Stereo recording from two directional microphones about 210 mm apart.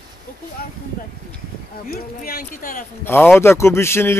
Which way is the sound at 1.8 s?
45° left (ahead or behind).